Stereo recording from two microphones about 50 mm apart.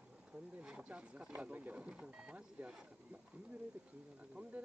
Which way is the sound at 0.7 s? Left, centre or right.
Right.